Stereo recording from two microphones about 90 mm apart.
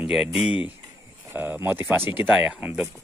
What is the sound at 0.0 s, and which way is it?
Speech, 5° right (ahead or behind).